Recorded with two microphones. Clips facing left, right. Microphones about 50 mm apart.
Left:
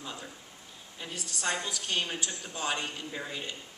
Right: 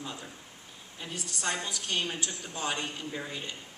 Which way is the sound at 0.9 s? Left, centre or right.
Centre.